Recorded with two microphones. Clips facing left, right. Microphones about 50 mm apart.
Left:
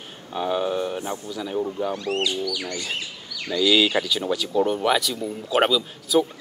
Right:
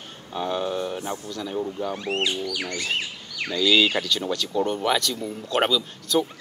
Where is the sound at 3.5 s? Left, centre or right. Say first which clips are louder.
Left 1 dB; centre.